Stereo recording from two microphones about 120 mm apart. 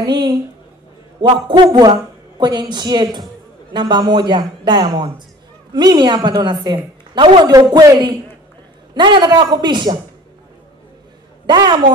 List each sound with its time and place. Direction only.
0.0 s a sound: 35° right (ahead or behind)
1.2 s a woman's voice: 35° right (ahead or behind)
11.4 s a woman's voice: 35° right (ahead or behind)